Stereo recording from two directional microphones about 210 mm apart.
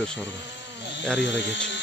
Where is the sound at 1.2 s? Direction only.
60° left (ahead or behind).